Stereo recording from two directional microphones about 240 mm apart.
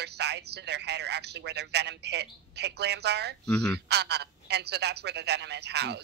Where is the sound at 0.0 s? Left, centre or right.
Right.